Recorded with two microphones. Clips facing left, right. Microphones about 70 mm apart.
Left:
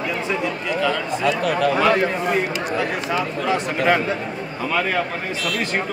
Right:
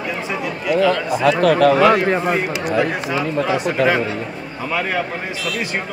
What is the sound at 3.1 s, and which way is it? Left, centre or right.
A man's voice, centre.